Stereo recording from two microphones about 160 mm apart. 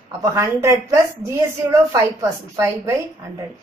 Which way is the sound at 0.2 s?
15° right (ahead or behind).